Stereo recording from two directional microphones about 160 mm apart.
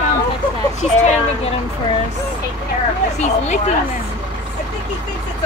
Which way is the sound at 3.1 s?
45° left (ahead or behind).